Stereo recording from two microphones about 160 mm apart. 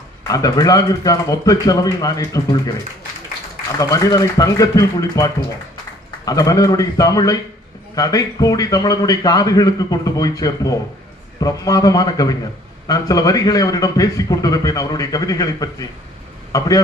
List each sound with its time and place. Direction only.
0.3 s a man's voice: 25° left (ahead or behind)
3.8 s a man's voice: 20° left (ahead or behind)